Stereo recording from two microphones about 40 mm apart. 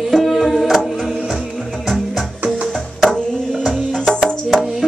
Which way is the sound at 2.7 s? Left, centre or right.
Centre.